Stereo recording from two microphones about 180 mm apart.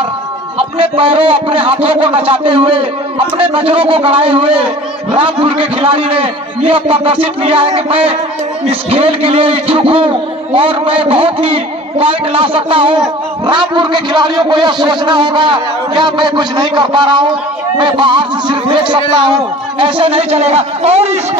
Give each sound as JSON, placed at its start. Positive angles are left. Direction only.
{"t": 0.6, "sound": "a man's voice", "side_deg": -30}